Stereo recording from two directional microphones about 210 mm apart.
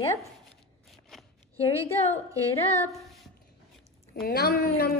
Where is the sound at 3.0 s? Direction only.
Centre (ahead or behind).